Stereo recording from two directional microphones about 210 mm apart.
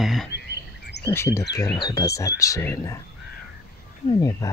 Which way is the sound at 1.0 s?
15° left (ahead or behind).